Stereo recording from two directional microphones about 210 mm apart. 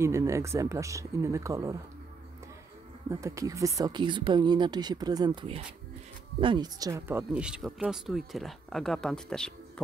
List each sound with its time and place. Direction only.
0.0 s speech: 15° right (ahead or behind)
3.1 s speech: 15° right (ahead or behind); by 9.5 s 5° left (ahead or behind)